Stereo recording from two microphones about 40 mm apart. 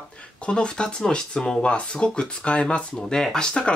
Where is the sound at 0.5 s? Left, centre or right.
Left.